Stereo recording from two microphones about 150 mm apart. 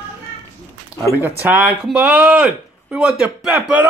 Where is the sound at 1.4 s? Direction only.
10° right (ahead or behind).